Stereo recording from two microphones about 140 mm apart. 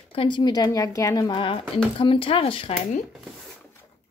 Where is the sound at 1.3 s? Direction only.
40° left (ahead or behind).